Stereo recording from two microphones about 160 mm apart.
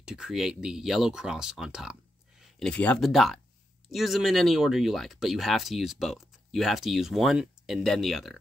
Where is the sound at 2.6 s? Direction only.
10° left (ahead or behind).